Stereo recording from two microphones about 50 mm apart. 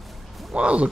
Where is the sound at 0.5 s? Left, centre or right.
Right.